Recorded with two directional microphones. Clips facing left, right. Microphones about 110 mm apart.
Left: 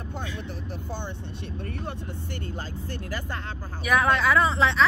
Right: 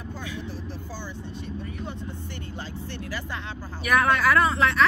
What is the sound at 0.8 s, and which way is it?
Speech, 60° left (ahead or behind).